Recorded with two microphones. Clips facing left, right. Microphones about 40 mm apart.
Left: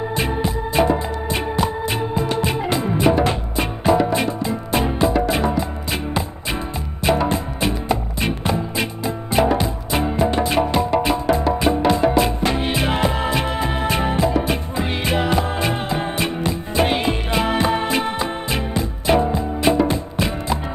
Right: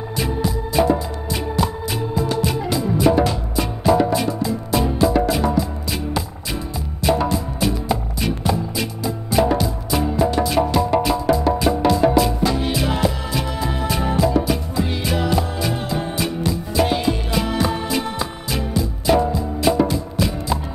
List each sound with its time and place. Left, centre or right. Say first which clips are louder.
0.1 s organ: left 1 dB; left
1.3 s music: even; left